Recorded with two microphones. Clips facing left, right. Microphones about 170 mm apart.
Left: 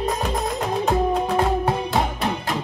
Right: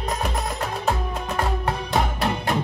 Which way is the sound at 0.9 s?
15° left (ahead or behind).